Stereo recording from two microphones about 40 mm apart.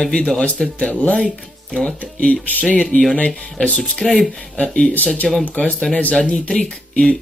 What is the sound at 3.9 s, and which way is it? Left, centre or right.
Speech, centre.